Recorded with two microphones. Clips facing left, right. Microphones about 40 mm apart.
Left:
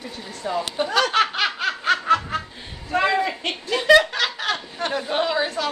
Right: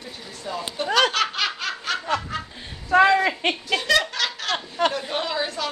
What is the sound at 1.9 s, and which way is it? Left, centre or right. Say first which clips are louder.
Snicker: left 7 dB; left.